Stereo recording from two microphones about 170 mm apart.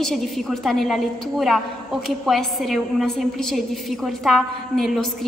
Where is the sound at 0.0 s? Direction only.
Centre (ahead or behind).